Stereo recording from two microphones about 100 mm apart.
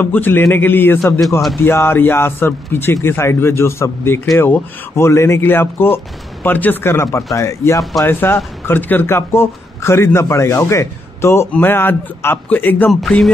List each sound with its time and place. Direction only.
0.0 s speech: 20° left (ahead or behind)
12.9 s speech: 5° left (ahead or behind)